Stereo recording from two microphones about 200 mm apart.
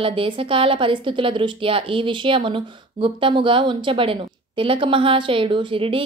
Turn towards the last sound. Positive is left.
turn(degrees=-25)  # may be behind; listen again after turning